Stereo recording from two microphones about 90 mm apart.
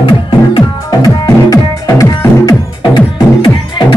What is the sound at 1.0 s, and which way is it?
Music, 45° left (ahead or behind).